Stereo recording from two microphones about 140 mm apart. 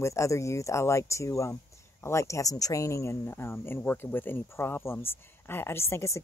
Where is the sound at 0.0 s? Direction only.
20° left (ahead or behind).